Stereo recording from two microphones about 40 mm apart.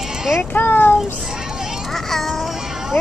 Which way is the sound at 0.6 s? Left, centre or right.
Left.